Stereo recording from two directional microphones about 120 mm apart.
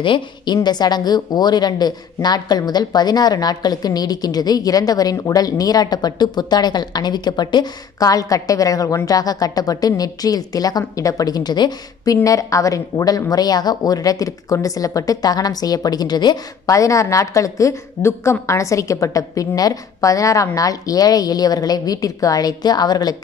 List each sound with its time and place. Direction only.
0.0 s a woman's voice: 45° left (ahead or behind)